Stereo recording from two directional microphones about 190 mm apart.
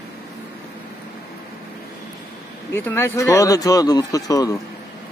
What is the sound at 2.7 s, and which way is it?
Speech, 10° left (ahead or behind).